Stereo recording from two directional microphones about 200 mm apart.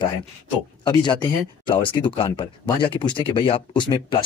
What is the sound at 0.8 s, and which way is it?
Speech, 20° left (ahead or behind).